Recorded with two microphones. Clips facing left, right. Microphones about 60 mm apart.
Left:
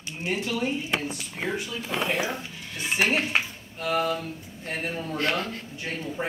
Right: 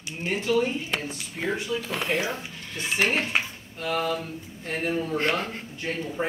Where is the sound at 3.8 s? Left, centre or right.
Centre.